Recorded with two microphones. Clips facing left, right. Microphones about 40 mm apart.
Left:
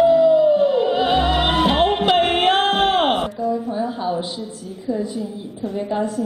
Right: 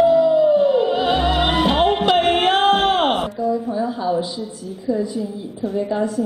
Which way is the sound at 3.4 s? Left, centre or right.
Left.